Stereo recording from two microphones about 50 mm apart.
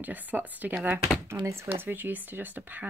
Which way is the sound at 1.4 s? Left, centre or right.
Right.